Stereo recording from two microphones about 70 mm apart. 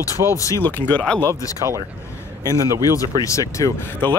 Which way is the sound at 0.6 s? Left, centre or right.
Left.